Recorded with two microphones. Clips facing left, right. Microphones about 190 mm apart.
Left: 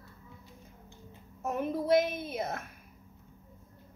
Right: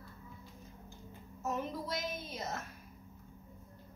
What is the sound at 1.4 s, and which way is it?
A woman's voice, 55° left (ahead or behind).